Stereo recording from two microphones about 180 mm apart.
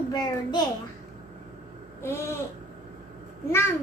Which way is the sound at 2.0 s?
15° left (ahead or behind).